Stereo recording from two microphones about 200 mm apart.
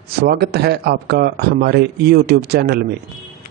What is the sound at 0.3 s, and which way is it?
Speech, 55° right (ahead or behind).